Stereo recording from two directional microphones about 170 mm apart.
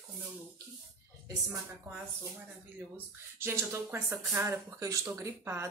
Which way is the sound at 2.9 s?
15° right (ahead or behind).